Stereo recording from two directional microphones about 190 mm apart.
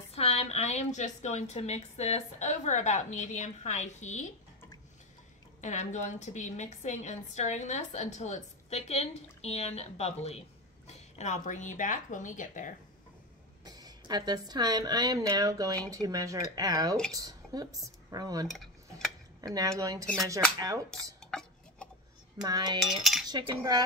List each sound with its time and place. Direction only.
0.1 s a woman's voice: 35° left (ahead or behind)
5.6 s a woman's voice: 40° left (ahead or behind)
13.7 s speech: 20° right (ahead or behind)
18.5 s cutlery: centre (ahead or behind)
19.4 s speech: 20° right (ahead or behind)
20.9 s a sound: 5° left (ahead or behind)
22.4 s speech: 20° right (ahead or behind)
22.8 s cutlery: centre (ahead or behind)
23.2 s cutlery: 20° right (ahead or behind)